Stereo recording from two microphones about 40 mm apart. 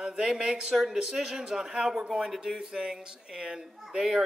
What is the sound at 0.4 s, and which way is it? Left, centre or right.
Speech, right.